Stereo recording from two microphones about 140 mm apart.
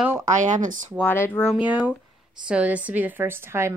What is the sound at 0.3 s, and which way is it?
Speech, 65° right (ahead or behind).